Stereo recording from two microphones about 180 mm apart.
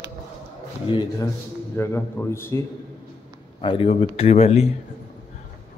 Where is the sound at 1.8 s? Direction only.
15° left (ahead or behind).